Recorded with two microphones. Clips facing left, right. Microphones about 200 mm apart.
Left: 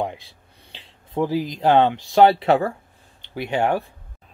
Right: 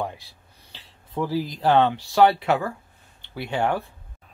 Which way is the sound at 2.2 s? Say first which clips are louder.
Left 3 dB; 30° left (ahead or behind).